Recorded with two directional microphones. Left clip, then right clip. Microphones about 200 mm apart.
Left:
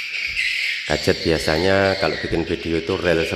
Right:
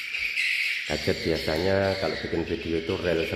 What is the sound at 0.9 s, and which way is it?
Speech, 25° left (ahead or behind).